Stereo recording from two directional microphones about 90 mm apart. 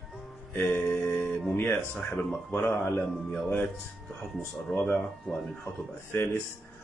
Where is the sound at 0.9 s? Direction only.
20° left (ahead or behind).